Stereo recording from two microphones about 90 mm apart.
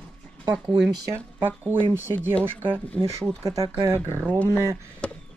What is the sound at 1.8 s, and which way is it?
Speech, 25° right (ahead or behind).